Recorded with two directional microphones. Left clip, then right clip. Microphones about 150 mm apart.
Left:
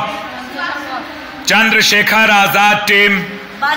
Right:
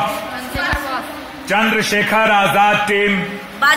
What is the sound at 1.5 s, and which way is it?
A man's voice, 15° left (ahead or behind).